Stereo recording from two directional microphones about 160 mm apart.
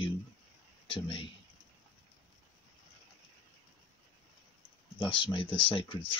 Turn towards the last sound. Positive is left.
turn(degrees=35)  # may be behind; listen again after turning